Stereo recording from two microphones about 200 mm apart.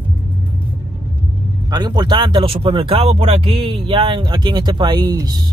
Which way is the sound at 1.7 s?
20° right (ahead or behind).